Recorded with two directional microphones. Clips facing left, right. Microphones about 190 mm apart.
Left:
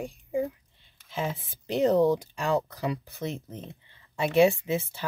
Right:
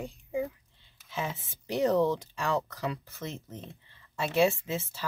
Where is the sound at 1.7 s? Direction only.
15° left (ahead or behind).